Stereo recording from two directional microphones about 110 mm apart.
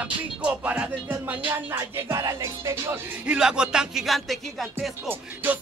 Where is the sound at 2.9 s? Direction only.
10° right (ahead or behind).